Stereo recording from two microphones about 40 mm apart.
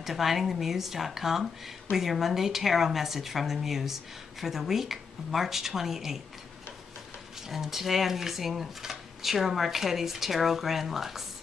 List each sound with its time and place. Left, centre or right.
0.0 s a woman's voice: centre
7.4 s a woman's voice: centre